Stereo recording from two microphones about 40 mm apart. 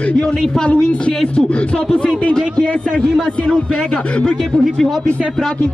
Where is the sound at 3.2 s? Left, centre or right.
Centre.